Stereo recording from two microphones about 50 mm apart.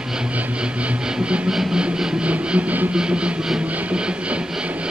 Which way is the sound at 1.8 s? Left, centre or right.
Right.